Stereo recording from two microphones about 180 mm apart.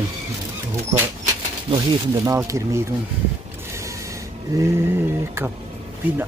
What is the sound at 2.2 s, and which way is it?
Speech, 15° right (ahead or behind).